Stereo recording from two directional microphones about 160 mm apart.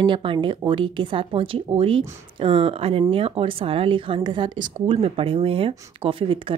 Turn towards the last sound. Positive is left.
turn(degrees=-35)  # may be behind; listen again after turning